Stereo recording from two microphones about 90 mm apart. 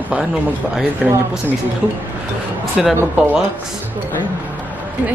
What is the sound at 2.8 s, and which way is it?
Speech, 5° right (ahead or behind).